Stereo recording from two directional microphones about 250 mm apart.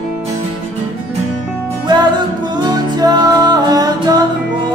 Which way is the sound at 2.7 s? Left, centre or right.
Centre.